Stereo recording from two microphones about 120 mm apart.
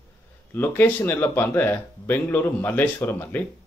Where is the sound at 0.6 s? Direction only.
15° left (ahead or behind).